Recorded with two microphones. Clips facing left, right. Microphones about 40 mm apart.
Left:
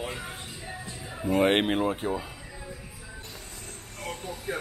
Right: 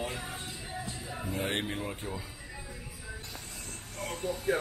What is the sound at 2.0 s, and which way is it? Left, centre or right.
Speech, left.